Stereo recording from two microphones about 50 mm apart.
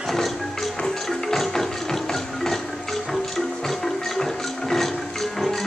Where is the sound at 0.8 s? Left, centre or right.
Centre.